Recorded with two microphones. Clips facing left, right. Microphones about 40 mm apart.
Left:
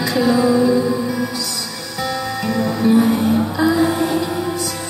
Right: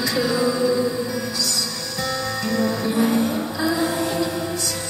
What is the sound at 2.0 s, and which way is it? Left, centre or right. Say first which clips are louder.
Music: left 4 dB; centre.